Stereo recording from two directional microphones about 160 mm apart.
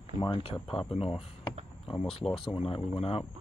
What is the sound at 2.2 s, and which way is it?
Speech, centre (ahead or behind).